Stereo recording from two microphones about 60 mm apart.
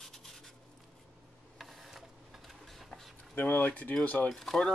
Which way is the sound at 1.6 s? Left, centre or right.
Centre.